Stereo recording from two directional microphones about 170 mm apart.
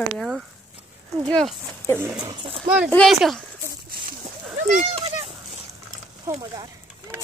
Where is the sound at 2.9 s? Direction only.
5° left (ahead or behind).